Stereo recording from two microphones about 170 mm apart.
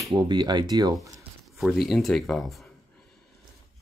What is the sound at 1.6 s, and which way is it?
Speech, centre (ahead or behind).